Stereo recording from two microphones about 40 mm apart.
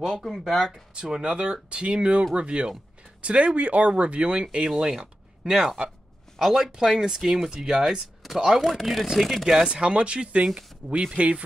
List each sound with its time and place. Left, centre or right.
0.0 s speech: centre
1.2 s speech: right
4.6 s speech: centre
6.3 s speech: centre
8.5 s speech: centre
9.5 s speech: centre
9.8 s speech: right